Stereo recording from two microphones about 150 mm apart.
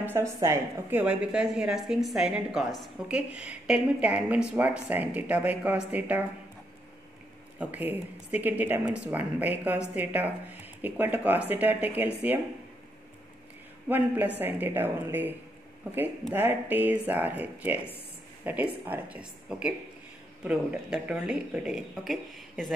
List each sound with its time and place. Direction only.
0.4 s a woman's voice: 15° right (ahead or behind)
7.5 s a woman's voice: 10° right (ahead or behind)
13.8 s a woman's voice: 10° right (ahead or behind)
16.3 s a woman's voice: 15° right (ahead or behind)